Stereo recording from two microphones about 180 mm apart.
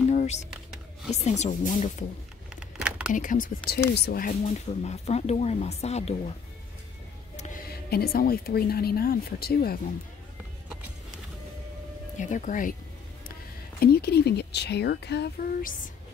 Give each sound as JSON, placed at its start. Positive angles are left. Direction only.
{"t": 0.1, "sound": "a sound", "side_deg": 40}
{"t": 1.2, "sound": "speech", "side_deg": 40}
{"t": 2.5, "sound": "a sound", "side_deg": -5}
{"t": 3.1, "sound": "speech", "side_deg": 45}
{"t": 7.6, "sound": "speech", "side_deg": 60}
{"t": 12.2, "sound": "speech", "side_deg": 45}
{"t": 13.7, "sound": "speech", "side_deg": 65}